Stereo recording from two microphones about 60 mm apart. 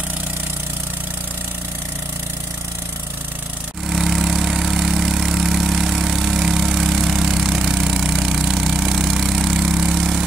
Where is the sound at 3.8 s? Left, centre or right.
Centre.